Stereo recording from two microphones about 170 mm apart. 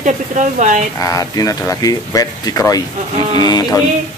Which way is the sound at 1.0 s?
20° left (ahead or behind).